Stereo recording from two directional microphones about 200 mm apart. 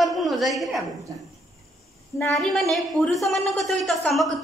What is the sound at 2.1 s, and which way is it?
A woman's voice, 5° left (ahead or behind).